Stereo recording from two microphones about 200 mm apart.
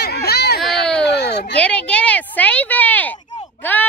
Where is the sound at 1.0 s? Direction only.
55° left (ahead or behind).